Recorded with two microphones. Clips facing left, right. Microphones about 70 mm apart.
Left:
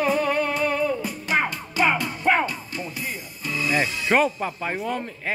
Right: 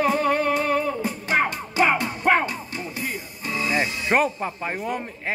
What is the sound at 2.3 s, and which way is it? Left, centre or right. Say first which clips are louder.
Music: right 1 dB; right.